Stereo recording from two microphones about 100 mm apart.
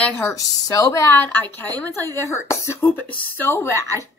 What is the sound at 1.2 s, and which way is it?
Speech, 20° left (ahead or behind).